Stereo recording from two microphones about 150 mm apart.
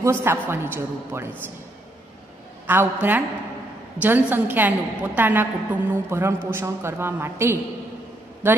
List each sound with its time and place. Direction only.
0.0 s a woman's voice: 15° right (ahead or behind)
2.6 s a woman's voice: 15° right (ahead or behind)